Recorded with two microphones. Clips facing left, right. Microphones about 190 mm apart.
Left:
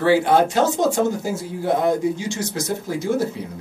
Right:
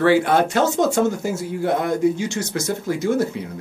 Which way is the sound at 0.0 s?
60° right (ahead or behind).